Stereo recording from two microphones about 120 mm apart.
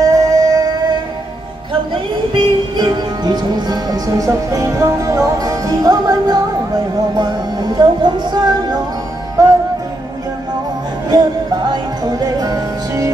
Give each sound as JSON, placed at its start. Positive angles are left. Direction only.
{"t": 0.0, "sound": "music", "side_deg": -30}
{"t": 2.3, "sound": "music", "side_deg": -35}
{"t": 9.4, "sound": "music", "side_deg": -25}
{"t": 11.1, "sound": "music", "side_deg": -35}